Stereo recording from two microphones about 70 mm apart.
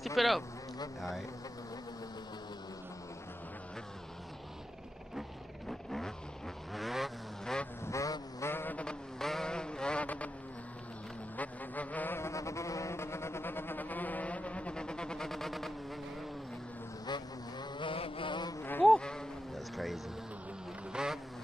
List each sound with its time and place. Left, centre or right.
0.0 s a sound: centre
5.7 s vehicle: centre
7.8 s vehicle: left
8.4 s mantra: left
9.2 s vehicle: centre
10.0 s a sound: centre
11.3 s music: left
12.2 s music: left; by 15.7 s centre
17.0 s vehicle: left
18.3 s a sound: left
18.6 s insect: left
18.9 s insect: centre
19.5 s vehicle: centre